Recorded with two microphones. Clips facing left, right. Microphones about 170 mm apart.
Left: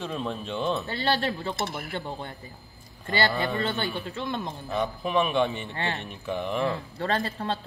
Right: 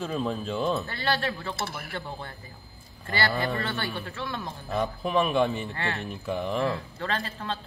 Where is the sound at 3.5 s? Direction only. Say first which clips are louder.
Left 3 dB; 20° left (ahead or behind).